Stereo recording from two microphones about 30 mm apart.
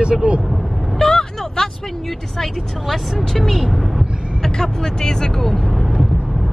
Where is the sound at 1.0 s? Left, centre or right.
Centre.